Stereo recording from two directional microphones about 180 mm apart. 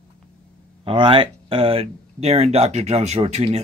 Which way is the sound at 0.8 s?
30° right (ahead or behind).